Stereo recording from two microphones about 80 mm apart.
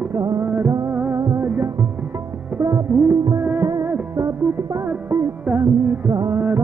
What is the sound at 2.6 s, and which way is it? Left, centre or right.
Music, right.